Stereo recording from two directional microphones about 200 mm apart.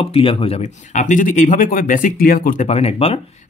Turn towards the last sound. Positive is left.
turn(degrees=30)  # may be behind; listen again after turning